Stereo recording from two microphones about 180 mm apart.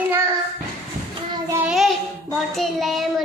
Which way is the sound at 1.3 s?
20° right (ahead or behind).